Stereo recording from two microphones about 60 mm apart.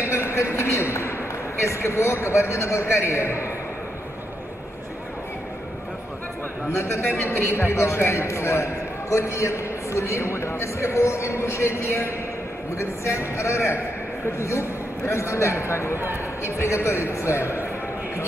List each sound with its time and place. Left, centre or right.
0.0 s a sound: left
1.6 s a man's voice: left
6.7 s a man's voice: left